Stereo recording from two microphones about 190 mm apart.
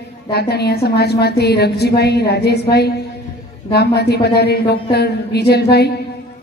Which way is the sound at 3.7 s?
60° left (ahead or behind).